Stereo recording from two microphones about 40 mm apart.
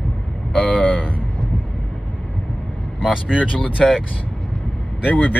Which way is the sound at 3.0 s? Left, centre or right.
Right.